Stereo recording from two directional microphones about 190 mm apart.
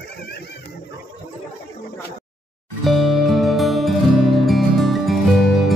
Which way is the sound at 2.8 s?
Centre (ahead or behind).